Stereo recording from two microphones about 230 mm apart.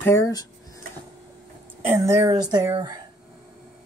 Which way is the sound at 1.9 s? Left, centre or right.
Centre.